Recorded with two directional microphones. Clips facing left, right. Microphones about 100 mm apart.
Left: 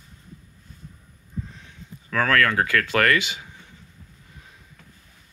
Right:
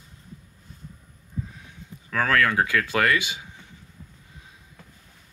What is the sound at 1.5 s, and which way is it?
Speech, 10° right (ahead or behind).